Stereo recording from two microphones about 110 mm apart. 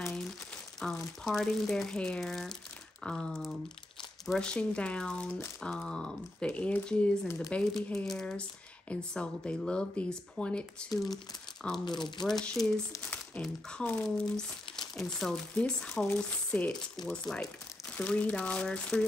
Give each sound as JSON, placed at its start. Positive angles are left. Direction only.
{"t": 0.8, "sound": "a sound", "side_deg": 10}
{"t": 1.2, "sound": "speech", "side_deg": 0}
{"t": 11.8, "sound": "speech", "side_deg": 40}
{"t": 12.3, "sound": "speech", "side_deg": 5}